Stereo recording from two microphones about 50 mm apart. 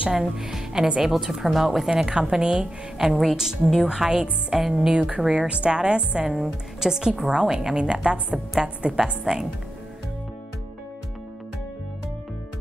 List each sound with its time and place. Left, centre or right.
0.1 s a woman's voice: centre
4.9 s a woman's voice: centre